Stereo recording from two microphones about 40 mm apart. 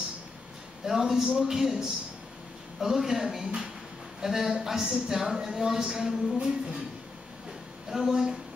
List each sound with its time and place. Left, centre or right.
0.8 s speech: centre
6.3 s music: right
7.9 s speech: centre